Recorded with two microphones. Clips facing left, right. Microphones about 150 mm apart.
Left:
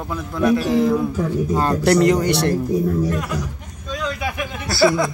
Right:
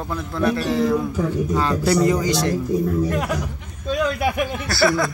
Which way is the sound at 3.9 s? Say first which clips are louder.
Right 5 dB; 55° right (ahead or behind).